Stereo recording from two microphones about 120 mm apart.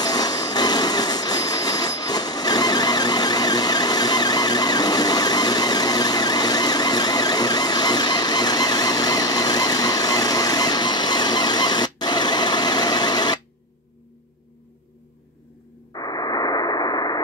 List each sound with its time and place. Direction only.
0.0 s vehicle: 35° left (ahead or behind)
16.0 s radio: 35° left (ahead or behind)